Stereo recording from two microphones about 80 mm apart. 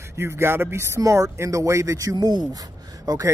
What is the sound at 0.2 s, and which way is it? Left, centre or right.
Speech, right.